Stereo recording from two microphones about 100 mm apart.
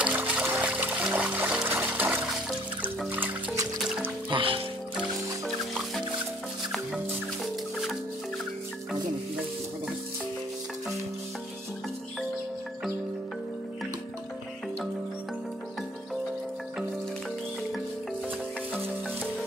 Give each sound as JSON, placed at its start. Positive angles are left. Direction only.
{"t": 0.0, "sound": "music", "side_deg": -15}
{"t": 4.3, "sound": "music", "side_deg": -65}